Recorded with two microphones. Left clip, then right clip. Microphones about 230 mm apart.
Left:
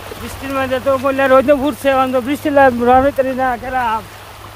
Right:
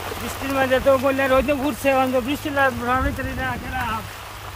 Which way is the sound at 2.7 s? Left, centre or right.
Left.